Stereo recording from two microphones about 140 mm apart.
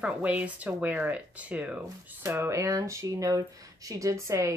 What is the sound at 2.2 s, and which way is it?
Speech, 20° right (ahead or behind).